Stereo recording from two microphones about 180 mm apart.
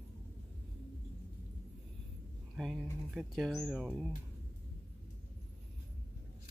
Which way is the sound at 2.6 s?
Centre (ahead or behind).